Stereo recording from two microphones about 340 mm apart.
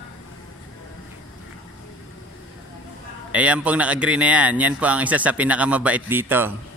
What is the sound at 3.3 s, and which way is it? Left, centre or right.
A man's voice, centre.